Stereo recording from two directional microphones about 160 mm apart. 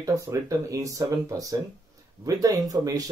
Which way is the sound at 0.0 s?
20° right (ahead or behind).